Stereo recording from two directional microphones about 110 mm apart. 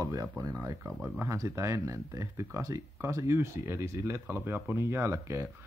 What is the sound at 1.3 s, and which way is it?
Speech, 30° right (ahead or behind).